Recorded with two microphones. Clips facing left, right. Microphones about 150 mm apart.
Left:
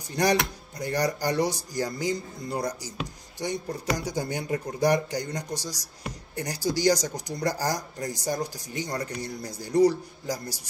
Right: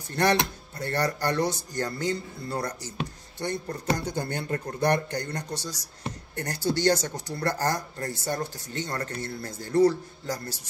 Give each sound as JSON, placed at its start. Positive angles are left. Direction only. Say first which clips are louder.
{"t": 0.1, "sound": "speech", "louder": "even", "side_deg": 10}